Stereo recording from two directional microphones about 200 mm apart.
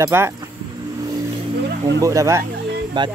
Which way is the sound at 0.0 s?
15° right (ahead or behind).